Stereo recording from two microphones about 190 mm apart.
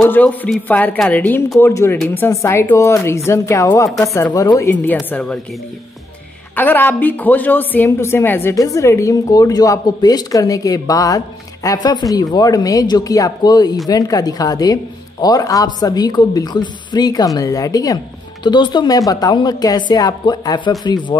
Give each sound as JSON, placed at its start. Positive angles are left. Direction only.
{"t": 0.0, "sound": "a woman's voice", "side_deg": 10}
{"t": 4.9, "sound": "a woman's voice", "side_deg": 5}
{"t": 6.5, "sound": "a woman's voice", "side_deg": 10}